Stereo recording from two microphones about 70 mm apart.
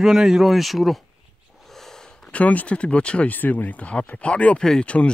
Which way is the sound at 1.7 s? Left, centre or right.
Centre.